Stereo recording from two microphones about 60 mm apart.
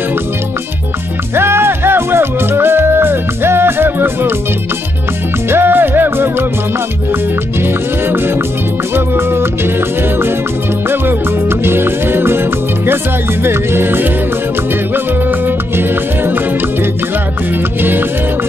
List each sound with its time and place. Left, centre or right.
1.3 s music: right
5.5 s music: right
7.6 s music: right
15.2 s music: right